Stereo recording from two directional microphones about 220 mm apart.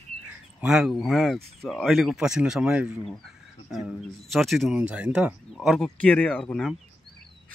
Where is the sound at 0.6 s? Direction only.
5° right (ahead or behind).